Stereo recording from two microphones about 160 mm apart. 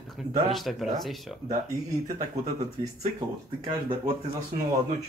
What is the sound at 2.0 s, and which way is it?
Speech, 55° right (ahead or behind).